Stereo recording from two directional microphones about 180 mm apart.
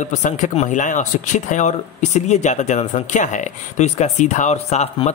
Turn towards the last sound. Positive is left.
turn(degrees=40)  # may be behind; listen again after turning